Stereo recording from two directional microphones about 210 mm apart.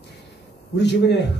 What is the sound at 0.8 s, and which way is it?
Speech, 55° left (ahead or behind).